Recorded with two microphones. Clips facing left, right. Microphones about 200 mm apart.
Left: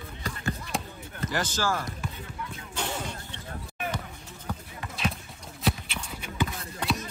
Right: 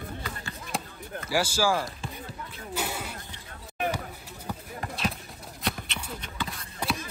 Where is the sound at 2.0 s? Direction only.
35° right (ahead or behind).